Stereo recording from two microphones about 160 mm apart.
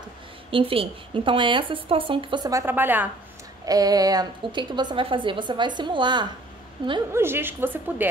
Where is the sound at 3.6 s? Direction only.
25° right (ahead or behind).